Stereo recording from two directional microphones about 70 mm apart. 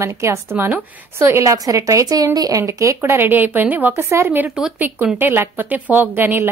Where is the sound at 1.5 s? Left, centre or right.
Right.